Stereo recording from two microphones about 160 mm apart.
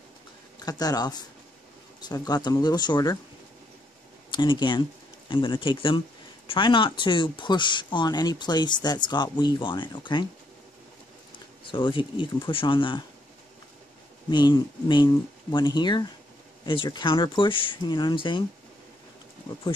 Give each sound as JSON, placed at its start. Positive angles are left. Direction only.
{"t": 0.6, "sound": "speech", "side_deg": 25}
{"t": 4.3, "sound": "speech", "side_deg": 30}
{"t": 11.6, "sound": "speech", "side_deg": 30}
{"t": 14.3, "sound": "speech", "side_deg": 30}